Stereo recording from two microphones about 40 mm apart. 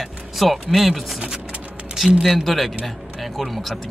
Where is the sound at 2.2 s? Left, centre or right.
Centre.